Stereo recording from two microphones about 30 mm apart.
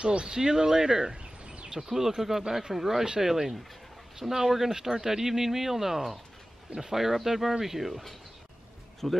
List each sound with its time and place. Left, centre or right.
0.0 s speech: right
1.7 s speech: centre
9.0 s speech: centre